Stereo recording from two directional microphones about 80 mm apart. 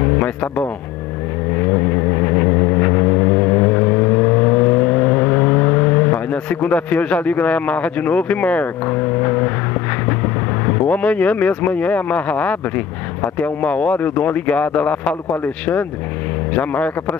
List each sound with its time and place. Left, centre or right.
1.7 s vehicle: left
13.4 s speech: centre